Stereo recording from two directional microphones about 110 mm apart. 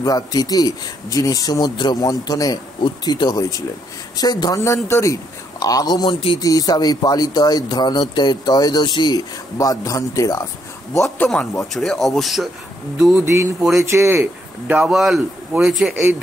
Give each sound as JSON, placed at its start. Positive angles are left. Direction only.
{"t": 0.0, "sound": "speech", "side_deg": 35}
{"t": 4.6, "sound": "speech", "side_deg": 25}
{"t": 11.2, "sound": "speech", "side_deg": 0}
{"t": 13.2, "sound": "speech", "side_deg": -25}
{"t": 13.6, "sound": "speech", "side_deg": -5}
{"t": 13.8, "sound": "speech", "side_deg": -25}
{"t": 14.8, "sound": "speech", "side_deg": -5}
{"t": 15.9, "sound": "speech", "side_deg": -20}